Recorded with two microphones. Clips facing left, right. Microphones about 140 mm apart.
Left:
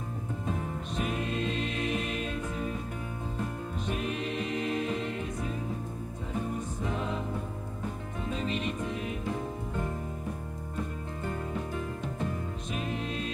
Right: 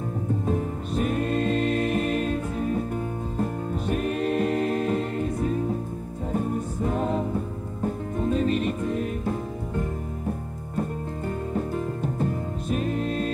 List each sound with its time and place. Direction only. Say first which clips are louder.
0.9 s music: right 8 dB; 45° right (ahead or behind)
11.5 s music: right 7 dB; 45° right (ahead or behind)